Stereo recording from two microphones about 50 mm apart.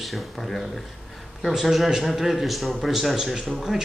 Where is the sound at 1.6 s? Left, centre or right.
Centre.